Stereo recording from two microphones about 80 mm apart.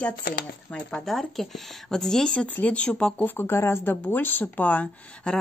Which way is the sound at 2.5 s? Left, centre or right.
Centre.